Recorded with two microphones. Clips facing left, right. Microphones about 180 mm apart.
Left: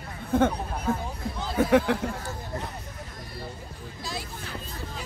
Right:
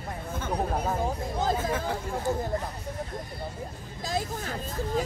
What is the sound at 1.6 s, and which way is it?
Speech, 75° left (ahead or behind).